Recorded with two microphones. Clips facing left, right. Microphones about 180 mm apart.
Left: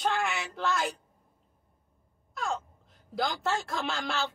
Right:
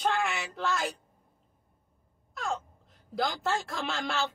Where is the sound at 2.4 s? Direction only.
Centre (ahead or behind).